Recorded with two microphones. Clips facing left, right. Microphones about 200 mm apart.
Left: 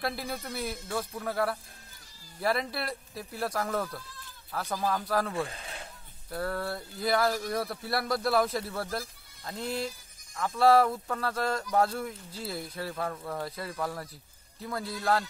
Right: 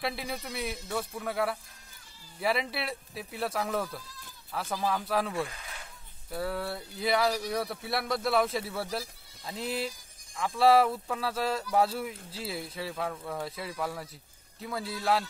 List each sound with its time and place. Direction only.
0.0 s speech: centre (ahead or behind)
5.5 s a sound: 30° left (ahead or behind)
6.3 s speech: 5° right (ahead or behind)